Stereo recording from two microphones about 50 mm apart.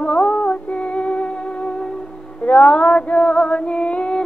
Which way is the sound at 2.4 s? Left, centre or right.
Left.